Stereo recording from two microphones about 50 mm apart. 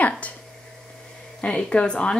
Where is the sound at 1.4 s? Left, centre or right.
Left.